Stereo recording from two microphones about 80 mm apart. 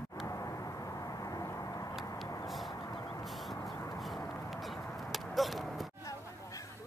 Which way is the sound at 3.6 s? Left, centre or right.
Left.